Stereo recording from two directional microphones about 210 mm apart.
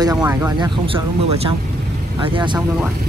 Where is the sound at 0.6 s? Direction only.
25° right (ahead or behind).